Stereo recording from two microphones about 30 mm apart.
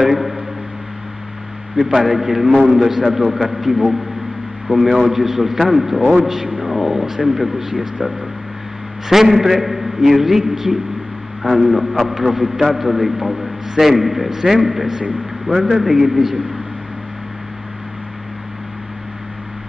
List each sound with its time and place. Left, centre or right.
0.0 s speech: centre
2.0 s a man's voice: centre
6.6 s a sound: centre
7.3 s a man's voice: centre
11.4 s a man's voice: centre
14.3 s a man's voice: centre
15.4 s a man's voice: centre